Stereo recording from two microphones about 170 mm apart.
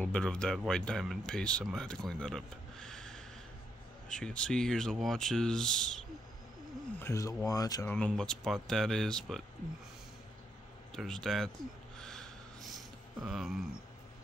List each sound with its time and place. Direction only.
0.0 s speech: 5° left (ahead or behind)
7.0 s speech: 15° left (ahead or behind)
8.1 s speech: centre (ahead or behind)
11.0 s speech: centre (ahead or behind)
12.0 s a sound: 5° left (ahead or behind)